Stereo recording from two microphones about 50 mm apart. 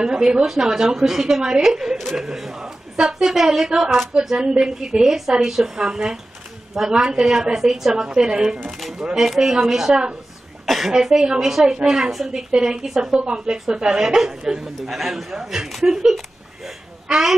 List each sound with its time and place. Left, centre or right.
0.0 s a woman's voice: centre
8.6 s a woman's voice: centre
16.6 s a sound: centre